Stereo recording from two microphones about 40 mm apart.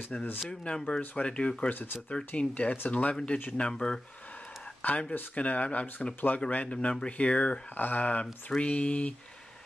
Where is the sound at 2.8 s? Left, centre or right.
Left.